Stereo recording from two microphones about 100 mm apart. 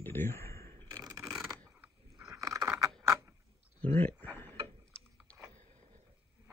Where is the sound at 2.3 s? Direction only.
35° right (ahead or behind).